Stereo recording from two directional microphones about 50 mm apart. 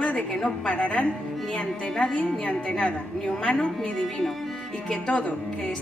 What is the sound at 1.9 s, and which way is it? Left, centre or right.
Speech, centre.